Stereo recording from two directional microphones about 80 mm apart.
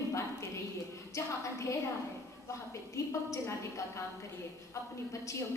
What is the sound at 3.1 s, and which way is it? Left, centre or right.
Speech, left.